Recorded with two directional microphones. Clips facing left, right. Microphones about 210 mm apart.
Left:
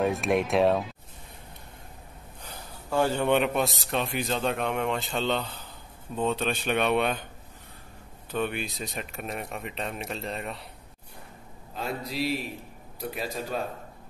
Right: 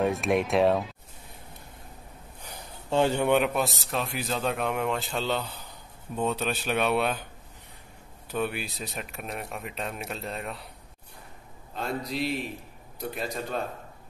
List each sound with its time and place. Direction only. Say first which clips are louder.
0.0 s a man's voice: even; centre (ahead or behind)
2.4 s a sound: even; 20° right (ahead or behind)
3.3 s a man's voice: even; centre (ahead or behind)
8.3 s a man's voice: even; 5° right (ahead or behind)
11.7 s a man's voice: right 1 dB; centre (ahead or behind)